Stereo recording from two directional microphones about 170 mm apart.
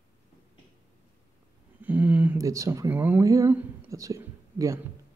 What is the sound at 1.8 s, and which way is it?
Speech, 10° right (ahead or behind).